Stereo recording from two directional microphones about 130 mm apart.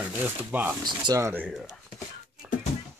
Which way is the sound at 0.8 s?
35° right (ahead or behind).